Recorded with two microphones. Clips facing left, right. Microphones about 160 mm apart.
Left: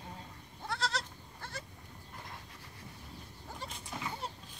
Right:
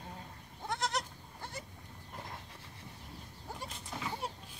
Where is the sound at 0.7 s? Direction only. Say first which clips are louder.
Right 1 dB; 20° right (ahead or behind).